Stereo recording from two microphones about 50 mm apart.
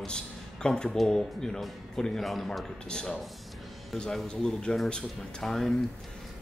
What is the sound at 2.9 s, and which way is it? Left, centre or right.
Speech, centre.